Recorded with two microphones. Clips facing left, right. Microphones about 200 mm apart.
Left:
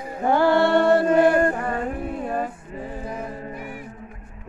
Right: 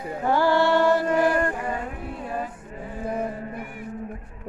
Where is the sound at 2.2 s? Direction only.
45° left (ahead or behind).